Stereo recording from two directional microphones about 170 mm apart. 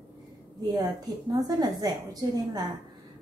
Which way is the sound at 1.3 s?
25° right (ahead or behind).